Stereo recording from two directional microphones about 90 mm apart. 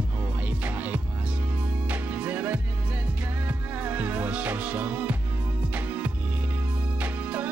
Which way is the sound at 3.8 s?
15° right (ahead or behind).